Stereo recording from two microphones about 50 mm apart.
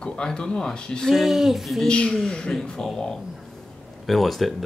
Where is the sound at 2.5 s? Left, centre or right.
Centre.